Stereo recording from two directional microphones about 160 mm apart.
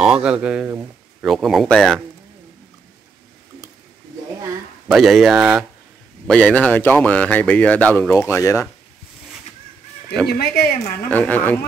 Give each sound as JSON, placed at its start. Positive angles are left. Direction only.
{"t": 0.0, "sound": "speech", "side_deg": -5}
{"t": 4.9, "sound": "speech", "side_deg": 0}
{"t": 10.2, "sound": "speech", "side_deg": 85}
{"t": 11.1, "sound": "speech", "side_deg": 10}